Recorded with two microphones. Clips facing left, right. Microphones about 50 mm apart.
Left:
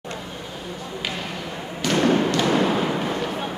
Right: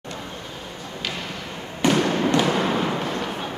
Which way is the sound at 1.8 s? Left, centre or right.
Right.